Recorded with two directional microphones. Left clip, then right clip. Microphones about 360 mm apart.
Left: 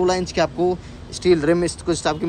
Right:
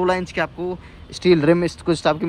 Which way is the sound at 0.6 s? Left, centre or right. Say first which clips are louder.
Left 7 dB; centre.